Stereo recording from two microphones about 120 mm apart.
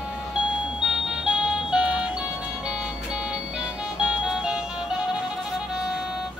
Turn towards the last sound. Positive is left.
turn(degrees=-5)  # may be behind; listen again after turning